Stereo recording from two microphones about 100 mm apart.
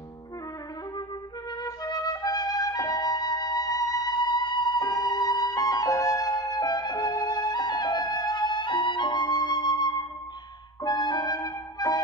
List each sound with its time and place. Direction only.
1.6 s music: 40° left (ahead or behind)